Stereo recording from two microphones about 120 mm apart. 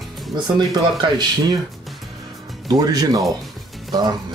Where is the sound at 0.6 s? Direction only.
35° right (ahead or behind).